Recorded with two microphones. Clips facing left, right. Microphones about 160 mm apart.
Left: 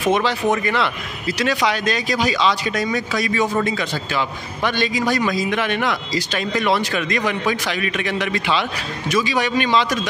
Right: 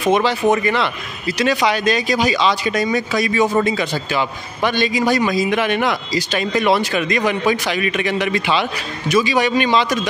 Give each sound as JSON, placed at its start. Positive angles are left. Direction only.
{"t": 0.1, "sound": "a man's voice", "side_deg": -5}